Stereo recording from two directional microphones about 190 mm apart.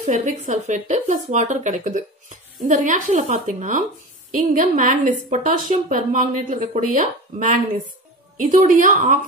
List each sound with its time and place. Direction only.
0.0 s a woman's voice: 40° right (ahead or behind)